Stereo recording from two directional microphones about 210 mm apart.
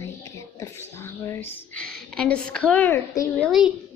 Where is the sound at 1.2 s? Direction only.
10° left (ahead or behind).